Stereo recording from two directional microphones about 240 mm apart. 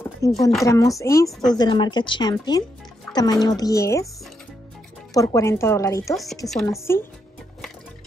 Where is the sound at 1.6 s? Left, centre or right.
Centre.